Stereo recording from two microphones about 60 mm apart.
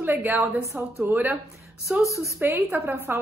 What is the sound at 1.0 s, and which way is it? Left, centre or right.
Speech, right.